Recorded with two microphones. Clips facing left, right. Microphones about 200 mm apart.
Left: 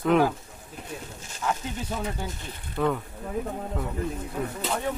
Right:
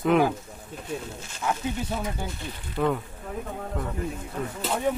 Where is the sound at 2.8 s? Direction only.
5° right (ahead or behind).